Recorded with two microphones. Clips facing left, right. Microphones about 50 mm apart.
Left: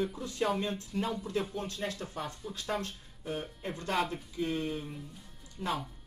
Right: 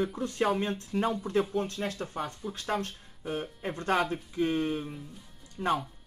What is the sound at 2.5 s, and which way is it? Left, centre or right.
Speech, centre.